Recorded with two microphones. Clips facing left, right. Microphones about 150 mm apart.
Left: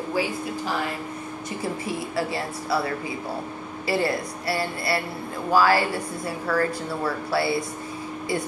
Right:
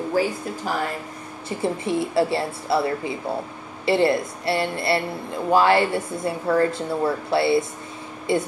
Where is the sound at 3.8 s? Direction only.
25° right (ahead or behind).